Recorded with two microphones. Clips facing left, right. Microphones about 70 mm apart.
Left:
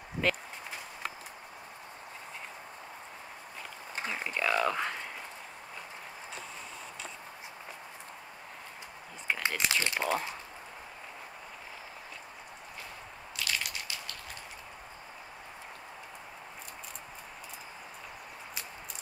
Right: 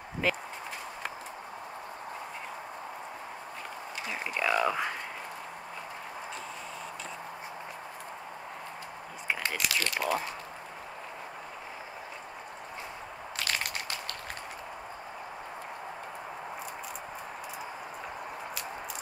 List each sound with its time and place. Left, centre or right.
0.2 s speech: centre
4.1 s a sound: centre
9.6 s speech: left
13.4 s squish: right